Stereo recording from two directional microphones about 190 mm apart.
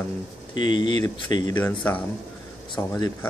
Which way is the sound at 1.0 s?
20° left (ahead or behind).